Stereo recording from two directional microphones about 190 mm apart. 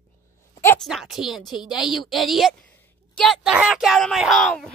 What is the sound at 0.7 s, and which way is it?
Speech, centre (ahead or behind).